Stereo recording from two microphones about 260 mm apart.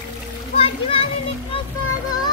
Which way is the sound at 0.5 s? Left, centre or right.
Left.